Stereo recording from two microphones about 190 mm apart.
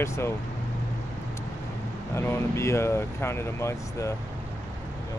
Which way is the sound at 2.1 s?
15° left (ahead or behind).